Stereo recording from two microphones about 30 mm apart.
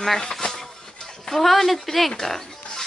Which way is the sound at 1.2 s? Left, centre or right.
Centre.